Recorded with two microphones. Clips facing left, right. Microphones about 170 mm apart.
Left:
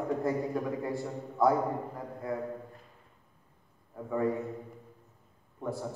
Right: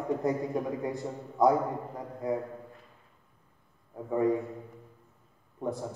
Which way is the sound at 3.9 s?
20° right (ahead or behind).